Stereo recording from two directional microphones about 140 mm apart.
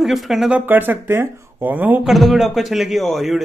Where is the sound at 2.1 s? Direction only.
Centre (ahead or behind).